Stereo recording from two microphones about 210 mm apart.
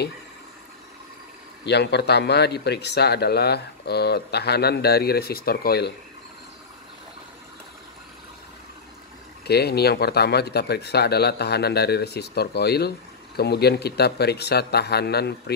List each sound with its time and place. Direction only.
1.6 s speech: 55° left (ahead or behind)
9.5 s speech: 50° left (ahead or behind)